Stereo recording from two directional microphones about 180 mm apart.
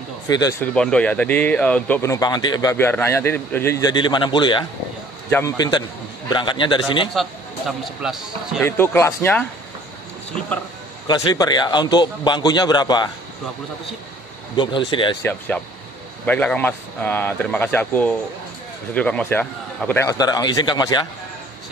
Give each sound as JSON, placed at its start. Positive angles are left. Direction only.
{"t": 0.3, "sound": "a man's voice", "side_deg": 20}
{"t": 0.6, "sound": "a man's voice", "side_deg": 5}
{"t": 7.2, "sound": "speech", "side_deg": 0}
{"t": 8.6, "sound": "speech", "side_deg": 15}
{"t": 11.1, "sound": "a man's voice", "side_deg": 20}
{"t": 14.6, "sound": "a man's voice", "side_deg": 25}
{"t": 15.2, "sound": "speech", "side_deg": 10}
{"t": 20.1, "sound": "a man's voice", "side_deg": 20}